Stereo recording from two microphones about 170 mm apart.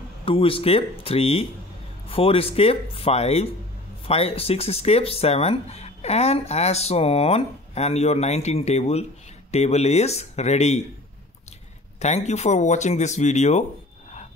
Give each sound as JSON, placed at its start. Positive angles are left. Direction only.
{"t": 0.2, "sound": "speech", "side_deg": 30}
{"t": 12.0, "sound": "speech", "side_deg": 40}